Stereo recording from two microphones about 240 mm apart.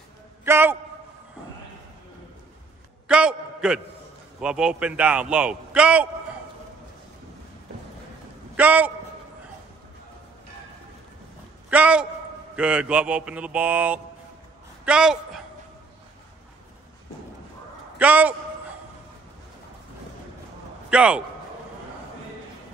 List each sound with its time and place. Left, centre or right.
0.5 s a sound: centre
3.1 s a sound: centre
4.4 s a man's voice: centre
8.5 s a man's voice: centre
11.7 s a man's voice: centre
17.9 s a man's voice: centre
20.9 s a man's voice: centre